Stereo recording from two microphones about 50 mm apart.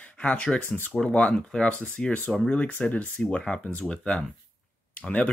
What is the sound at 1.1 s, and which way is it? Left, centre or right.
Speech, left.